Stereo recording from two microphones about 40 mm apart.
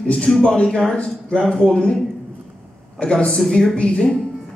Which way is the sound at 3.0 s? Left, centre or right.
Left.